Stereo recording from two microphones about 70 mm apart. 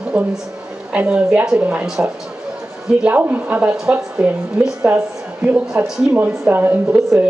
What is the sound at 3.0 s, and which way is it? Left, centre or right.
A woman's voice, right.